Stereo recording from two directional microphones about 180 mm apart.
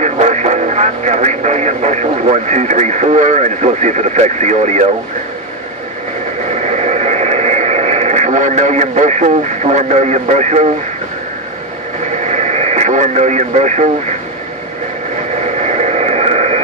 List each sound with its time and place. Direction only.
0.0 s speech: 40° right (ahead or behind)
6.6 s radio: 40° right (ahead or behind)
12.3 s radio: 40° right (ahead or behind)
15.6 s radio: 40° right (ahead or behind)